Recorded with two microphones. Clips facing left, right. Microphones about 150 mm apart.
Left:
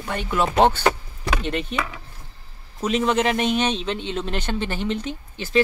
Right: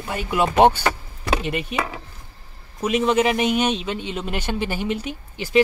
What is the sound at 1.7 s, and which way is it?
Speech, 35° right (ahead or behind).